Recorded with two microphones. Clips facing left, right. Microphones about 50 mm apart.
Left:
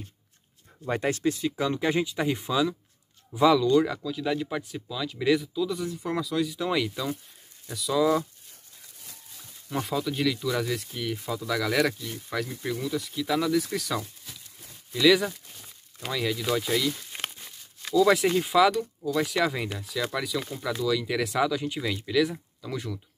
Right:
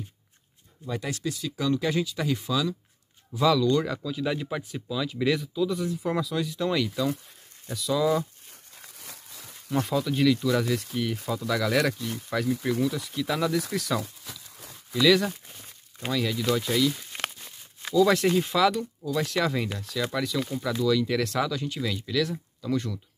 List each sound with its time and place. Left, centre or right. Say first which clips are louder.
0.8 s speech: left 5 dB; left; by 8.2 s centre
8.8 s a sound: right 5 dB; right
9.7 s speech: right 3 dB; centre